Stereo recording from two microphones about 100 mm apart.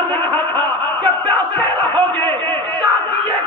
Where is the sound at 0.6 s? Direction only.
55° right (ahead or behind).